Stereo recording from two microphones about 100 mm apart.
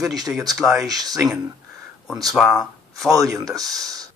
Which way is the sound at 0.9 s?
40° right (ahead or behind).